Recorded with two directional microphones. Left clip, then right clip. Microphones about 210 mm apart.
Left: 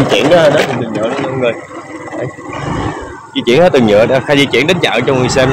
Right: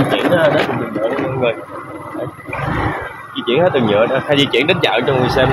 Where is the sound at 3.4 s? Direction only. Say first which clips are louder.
Left 6 dB; 55° left (ahead or behind).